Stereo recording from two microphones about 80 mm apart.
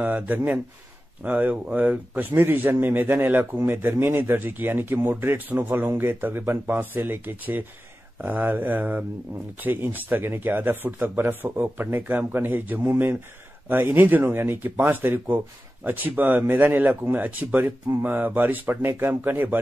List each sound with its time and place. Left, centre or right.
0.0 s speech: centre